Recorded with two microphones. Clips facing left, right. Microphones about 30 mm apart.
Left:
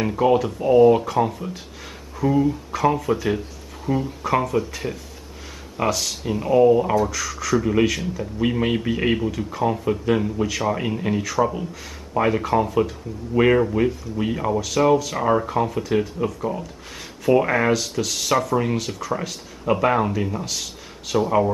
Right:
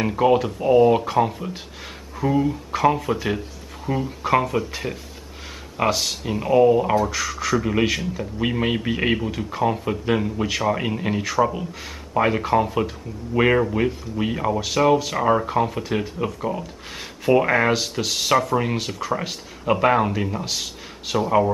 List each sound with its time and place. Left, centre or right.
0.0 s speech: centre